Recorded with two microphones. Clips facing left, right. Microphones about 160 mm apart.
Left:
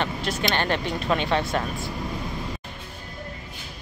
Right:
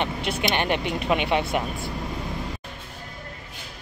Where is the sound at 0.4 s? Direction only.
15° right (ahead or behind).